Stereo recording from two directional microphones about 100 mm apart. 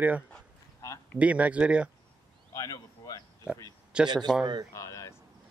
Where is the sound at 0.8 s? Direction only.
35° left (ahead or behind).